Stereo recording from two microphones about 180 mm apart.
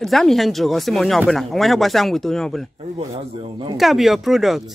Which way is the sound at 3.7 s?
Centre (ahead or behind).